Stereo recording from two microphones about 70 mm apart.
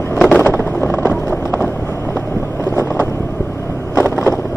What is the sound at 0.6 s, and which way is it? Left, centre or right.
Vehicle, left.